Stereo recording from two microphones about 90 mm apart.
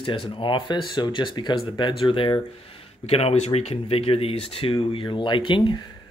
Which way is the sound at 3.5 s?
70° left (ahead or behind).